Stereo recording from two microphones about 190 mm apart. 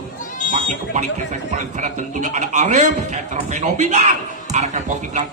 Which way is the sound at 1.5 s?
40° right (ahead or behind).